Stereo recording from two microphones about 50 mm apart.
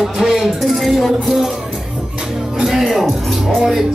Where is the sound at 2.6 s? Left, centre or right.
Centre.